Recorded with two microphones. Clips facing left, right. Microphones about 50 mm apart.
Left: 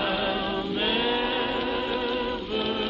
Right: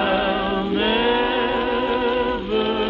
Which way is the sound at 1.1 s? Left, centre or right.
Centre.